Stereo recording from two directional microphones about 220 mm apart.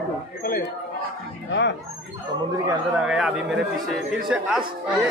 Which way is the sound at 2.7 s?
5° right (ahead or behind).